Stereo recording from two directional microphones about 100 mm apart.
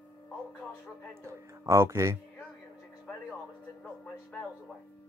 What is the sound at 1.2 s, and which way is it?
Speech, 30° right (ahead or behind).